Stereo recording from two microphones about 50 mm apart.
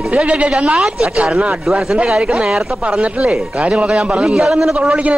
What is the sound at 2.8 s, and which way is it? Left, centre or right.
A man's voice, right.